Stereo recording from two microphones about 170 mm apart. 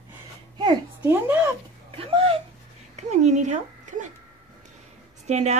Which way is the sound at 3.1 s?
45° right (ahead or behind).